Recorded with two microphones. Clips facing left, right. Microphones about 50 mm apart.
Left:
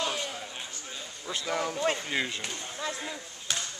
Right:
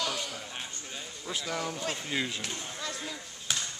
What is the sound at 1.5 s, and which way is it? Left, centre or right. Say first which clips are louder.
Speech: left 7 dB; centre.